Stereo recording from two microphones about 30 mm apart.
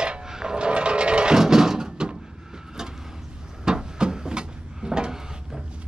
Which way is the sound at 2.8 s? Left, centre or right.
Right.